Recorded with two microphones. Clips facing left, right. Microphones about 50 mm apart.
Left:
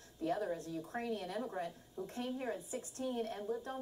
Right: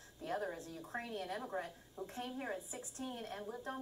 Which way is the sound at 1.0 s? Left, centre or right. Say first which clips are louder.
Left 3 dB; right.